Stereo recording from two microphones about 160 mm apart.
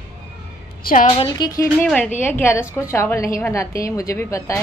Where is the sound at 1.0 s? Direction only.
35° left (ahead or behind).